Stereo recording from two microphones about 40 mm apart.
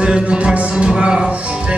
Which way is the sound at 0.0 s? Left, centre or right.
Right.